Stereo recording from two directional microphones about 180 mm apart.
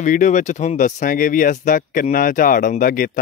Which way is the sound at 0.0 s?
45° left (ahead or behind).